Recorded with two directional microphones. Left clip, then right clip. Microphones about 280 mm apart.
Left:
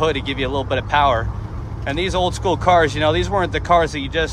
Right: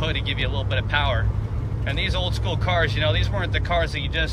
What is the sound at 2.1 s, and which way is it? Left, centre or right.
Speech, left.